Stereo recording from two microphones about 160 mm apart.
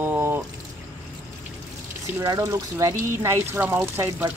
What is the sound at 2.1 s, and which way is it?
Speech, 20° right (ahead or behind).